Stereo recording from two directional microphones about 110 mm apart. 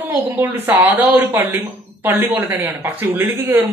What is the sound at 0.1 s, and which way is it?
Speech, 20° right (ahead or behind).